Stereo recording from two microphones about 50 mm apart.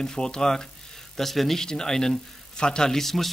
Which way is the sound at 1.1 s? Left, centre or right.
Centre.